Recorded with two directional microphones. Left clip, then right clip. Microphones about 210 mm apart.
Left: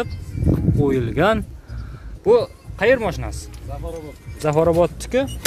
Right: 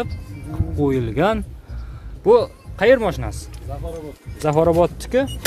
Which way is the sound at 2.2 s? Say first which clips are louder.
Right 1 dB; 15° right (ahead or behind).